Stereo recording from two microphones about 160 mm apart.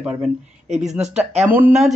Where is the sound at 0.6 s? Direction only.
45° right (ahead or behind).